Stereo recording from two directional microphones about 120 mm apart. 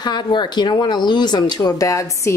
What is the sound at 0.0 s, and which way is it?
Speech, 35° left (ahead or behind).